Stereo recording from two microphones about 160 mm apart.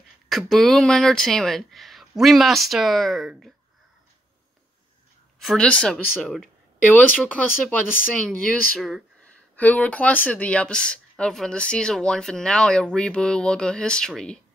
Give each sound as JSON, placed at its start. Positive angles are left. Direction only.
{"t": 0.3, "sound": "speech", "side_deg": 0}
{"t": 5.4, "sound": "speech", "side_deg": 5}